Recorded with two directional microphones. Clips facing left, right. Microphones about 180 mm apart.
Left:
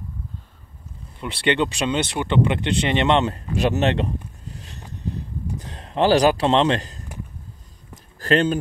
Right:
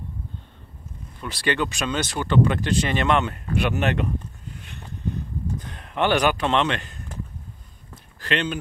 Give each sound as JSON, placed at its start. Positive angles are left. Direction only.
{"t": 1.2, "sound": "speech", "side_deg": 25}
{"t": 4.6, "sound": "a sound", "side_deg": 35}
{"t": 5.6, "sound": "speech", "side_deg": 30}
{"t": 8.2, "sound": "speech", "side_deg": 40}